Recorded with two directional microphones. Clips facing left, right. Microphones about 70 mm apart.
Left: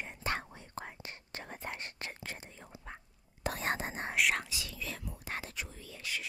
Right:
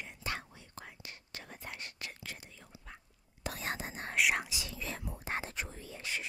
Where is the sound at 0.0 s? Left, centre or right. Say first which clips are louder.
Left 4 dB; left.